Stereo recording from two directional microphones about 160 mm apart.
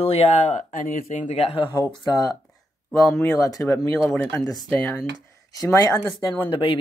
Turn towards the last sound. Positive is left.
turn(degrees=35)  # may be behind; listen again after turning